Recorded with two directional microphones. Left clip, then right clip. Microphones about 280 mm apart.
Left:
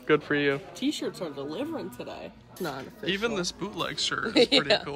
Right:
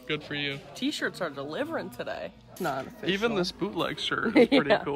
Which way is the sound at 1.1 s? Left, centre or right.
Right.